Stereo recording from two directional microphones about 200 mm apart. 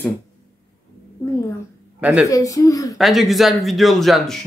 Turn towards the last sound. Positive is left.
turn(degrees=0)  # may be behind; listen again after turning